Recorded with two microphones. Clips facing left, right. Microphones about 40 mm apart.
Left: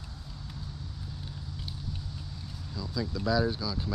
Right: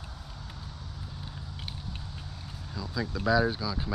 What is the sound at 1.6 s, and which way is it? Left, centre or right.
Vehicle, right.